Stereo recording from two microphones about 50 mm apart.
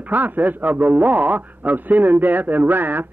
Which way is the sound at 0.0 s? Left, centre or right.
Right.